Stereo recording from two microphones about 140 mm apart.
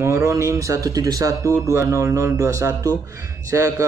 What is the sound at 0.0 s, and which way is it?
Speech, 20° right (ahead or behind).